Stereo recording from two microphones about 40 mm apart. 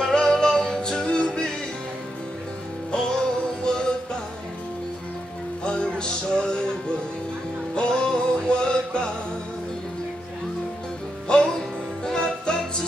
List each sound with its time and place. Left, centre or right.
0.0 s music: centre
2.9 s music: centre
5.6 s music: left
7.7 s music: left
11.2 s music: left